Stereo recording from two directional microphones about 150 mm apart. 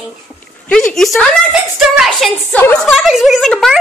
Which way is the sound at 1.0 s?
5° left (ahead or behind).